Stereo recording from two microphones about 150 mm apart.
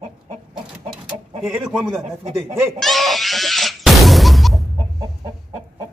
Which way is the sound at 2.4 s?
15° right (ahead or behind).